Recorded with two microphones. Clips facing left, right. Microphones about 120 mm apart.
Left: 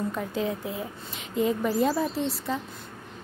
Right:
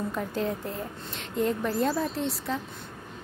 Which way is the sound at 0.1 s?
Centre (ahead or behind).